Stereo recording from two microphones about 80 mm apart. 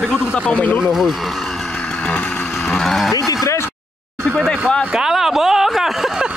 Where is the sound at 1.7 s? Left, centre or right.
Centre.